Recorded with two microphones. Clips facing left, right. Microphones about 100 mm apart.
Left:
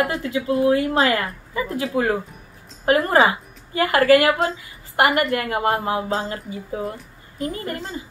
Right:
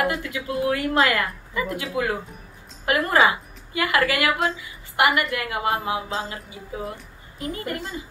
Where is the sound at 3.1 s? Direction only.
35° left (ahead or behind).